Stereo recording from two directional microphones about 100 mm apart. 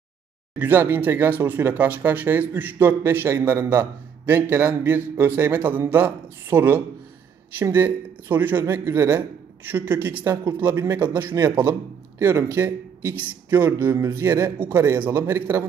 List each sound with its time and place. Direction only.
0.6 s a man's voice: 20° right (ahead or behind)